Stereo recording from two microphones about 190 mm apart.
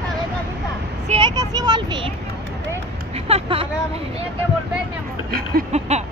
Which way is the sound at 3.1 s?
30° right (ahead or behind).